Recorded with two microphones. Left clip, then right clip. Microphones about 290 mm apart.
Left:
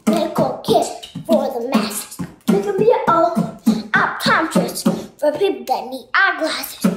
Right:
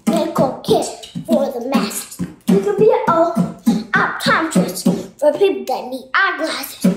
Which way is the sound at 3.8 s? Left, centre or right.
Centre.